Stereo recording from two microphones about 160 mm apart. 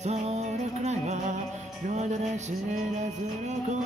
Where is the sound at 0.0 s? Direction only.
45° right (ahead or behind).